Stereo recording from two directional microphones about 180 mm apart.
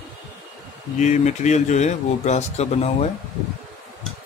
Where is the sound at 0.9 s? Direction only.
40° left (ahead or behind).